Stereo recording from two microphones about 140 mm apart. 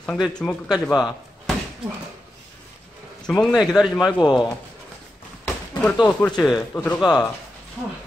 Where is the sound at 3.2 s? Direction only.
5° left (ahead or behind).